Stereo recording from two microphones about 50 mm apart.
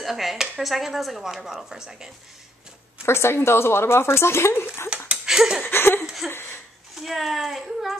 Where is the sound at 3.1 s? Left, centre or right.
Left.